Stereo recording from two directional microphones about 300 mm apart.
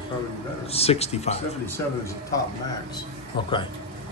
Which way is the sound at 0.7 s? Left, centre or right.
Centre.